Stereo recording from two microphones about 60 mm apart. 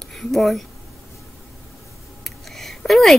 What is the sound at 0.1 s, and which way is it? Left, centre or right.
Speech, centre.